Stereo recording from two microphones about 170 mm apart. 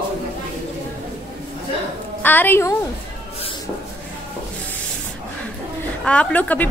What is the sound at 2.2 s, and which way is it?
Speech, 10° left (ahead or behind).